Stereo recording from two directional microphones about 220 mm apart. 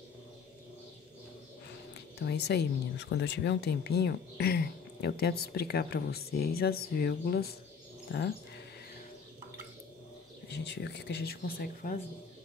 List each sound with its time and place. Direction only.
2.1 s speech: 50° left (ahead or behind)
10.5 s speech: 50° left (ahead or behind)